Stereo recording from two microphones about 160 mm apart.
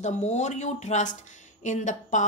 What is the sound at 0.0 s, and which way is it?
Speech, 45° left (ahead or behind).